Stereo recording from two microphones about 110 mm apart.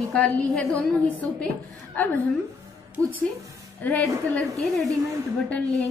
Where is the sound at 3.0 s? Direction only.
25° right (ahead or behind).